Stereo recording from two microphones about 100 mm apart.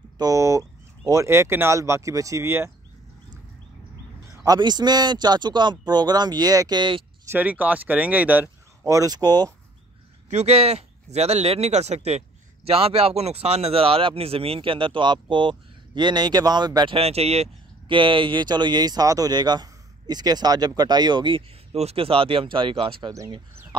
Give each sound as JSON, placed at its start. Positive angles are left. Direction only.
{"t": 0.2, "sound": "speech", "side_deg": -30}
{"t": 4.6, "sound": "speech", "side_deg": -45}
{"t": 6.8, "sound": "speech", "side_deg": -55}
{"t": 7.2, "sound": "speech", "side_deg": -15}
{"t": 8.8, "sound": "speech", "side_deg": -35}
{"t": 10.4, "sound": "speech", "side_deg": -90}
{"t": 12.6, "sound": "speech", "side_deg": -75}
{"t": 16.9, "sound": "speech", "side_deg": -90}
{"t": 21.7, "sound": "speech", "side_deg": -80}